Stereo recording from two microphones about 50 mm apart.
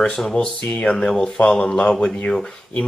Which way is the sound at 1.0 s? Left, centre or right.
Centre.